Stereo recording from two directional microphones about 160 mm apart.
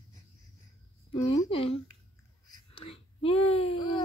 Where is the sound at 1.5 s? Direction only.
35° left (ahead or behind).